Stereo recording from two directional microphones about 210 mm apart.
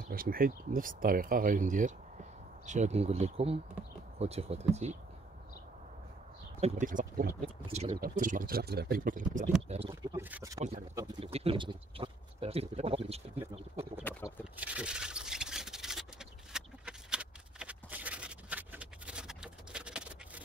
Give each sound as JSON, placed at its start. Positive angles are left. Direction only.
{"t": 0.1, "sound": "speech", "side_deg": -45}
{"t": 6.6, "sound": "speech", "side_deg": -35}
{"t": 7.4, "sound": "speech", "side_deg": -30}
{"t": 8.0, "sound": "speech", "side_deg": -40}
{"t": 9.7, "sound": "speech", "side_deg": -30}
{"t": 10.1, "sound": "speech", "side_deg": -15}
{"t": 11.0, "sound": "speech", "side_deg": -25}
{"t": 14.0, "sound": "speech", "side_deg": 10}
{"t": 14.4, "sound": "a sound", "side_deg": -5}